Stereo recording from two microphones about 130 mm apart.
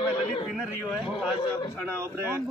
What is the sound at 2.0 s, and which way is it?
Speech, 20° right (ahead or behind).